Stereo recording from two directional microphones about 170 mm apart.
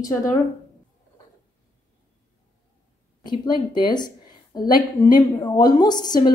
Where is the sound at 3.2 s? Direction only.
25° left (ahead or behind).